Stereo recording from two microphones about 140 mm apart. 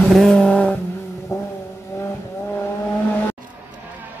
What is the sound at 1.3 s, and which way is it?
Vehicle, 20° left (ahead or behind).